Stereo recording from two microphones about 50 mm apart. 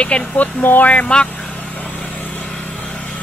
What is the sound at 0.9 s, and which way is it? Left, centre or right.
Speech, left.